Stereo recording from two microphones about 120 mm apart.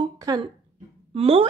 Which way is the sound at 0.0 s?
35° right (ahead or behind).